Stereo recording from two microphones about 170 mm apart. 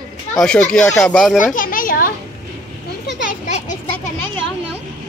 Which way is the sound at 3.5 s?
40° left (ahead or behind).